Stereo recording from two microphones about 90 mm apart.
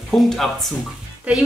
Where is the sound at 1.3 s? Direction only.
15° right (ahead or behind).